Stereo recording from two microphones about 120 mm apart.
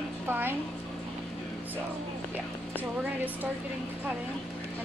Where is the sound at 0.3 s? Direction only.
20° right (ahead or behind).